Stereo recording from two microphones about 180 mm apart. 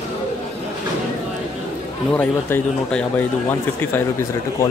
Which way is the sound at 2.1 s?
5° left (ahead or behind).